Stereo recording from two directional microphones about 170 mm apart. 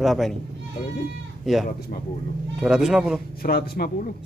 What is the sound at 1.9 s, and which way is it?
Speech, 60° left (ahead or behind).